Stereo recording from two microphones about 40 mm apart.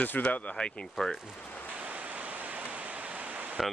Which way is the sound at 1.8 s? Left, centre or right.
Right.